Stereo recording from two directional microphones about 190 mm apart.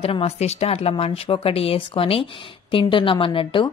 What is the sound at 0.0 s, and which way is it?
A woman's voice, 30° left (ahead or behind).